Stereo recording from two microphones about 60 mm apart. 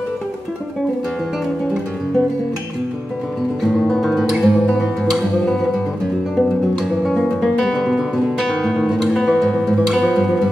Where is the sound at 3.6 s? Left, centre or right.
Centre.